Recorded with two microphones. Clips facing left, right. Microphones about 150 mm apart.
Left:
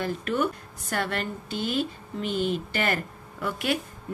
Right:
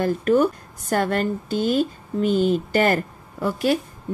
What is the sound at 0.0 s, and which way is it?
A woman's voice, 45° right (ahead or behind).